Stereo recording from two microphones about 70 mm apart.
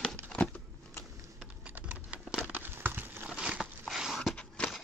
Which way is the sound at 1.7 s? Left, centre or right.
Right.